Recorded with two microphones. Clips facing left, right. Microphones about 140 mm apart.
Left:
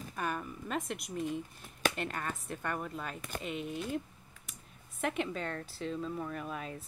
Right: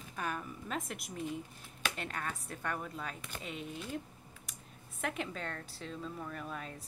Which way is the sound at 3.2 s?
50° left (ahead or behind).